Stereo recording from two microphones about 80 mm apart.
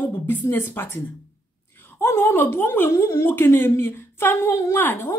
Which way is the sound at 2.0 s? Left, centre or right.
Left.